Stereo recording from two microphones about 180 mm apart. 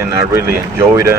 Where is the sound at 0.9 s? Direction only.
15° right (ahead or behind).